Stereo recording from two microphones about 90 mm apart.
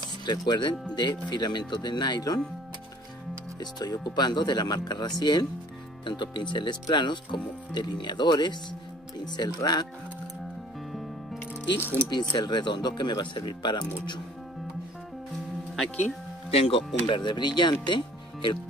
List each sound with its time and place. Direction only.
0.2 s speech: 55° left (ahead or behind)
3.5 s speech: 50° left (ahead or behind)
12.1 s speech: 55° left (ahead or behind)
16.4 s speech: 90° left; by 18.6 s 65° left (ahead or behind)